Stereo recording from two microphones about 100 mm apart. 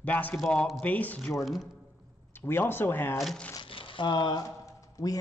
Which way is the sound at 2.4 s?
20° left (ahead or behind).